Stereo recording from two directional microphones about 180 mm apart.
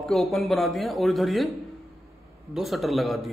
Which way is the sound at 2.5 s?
Centre (ahead or behind).